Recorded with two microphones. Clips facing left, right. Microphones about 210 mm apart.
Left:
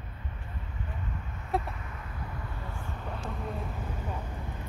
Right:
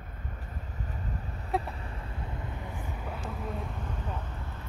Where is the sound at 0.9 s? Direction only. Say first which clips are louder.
Right 2 dB; 35° right (ahead or behind); by 3.6 s centre (ahead or behind).